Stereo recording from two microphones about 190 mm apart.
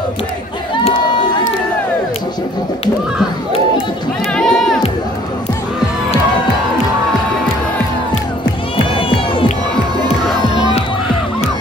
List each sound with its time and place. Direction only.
4.3 s speech: 5° left (ahead or behind)
8.9 s crowd: 25° left (ahead or behind)